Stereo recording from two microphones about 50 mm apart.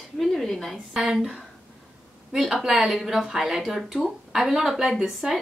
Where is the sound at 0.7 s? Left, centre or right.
Centre.